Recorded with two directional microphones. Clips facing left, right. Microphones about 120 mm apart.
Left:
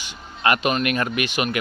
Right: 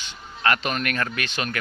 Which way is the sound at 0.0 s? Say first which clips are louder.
Left 2 dB; 15° left (ahead or behind).